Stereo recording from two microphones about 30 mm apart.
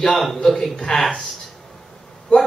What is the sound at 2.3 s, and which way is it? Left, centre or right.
Speech, left.